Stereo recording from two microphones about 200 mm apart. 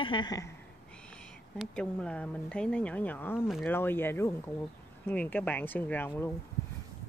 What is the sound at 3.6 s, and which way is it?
A woman's voice, 10° left (ahead or behind).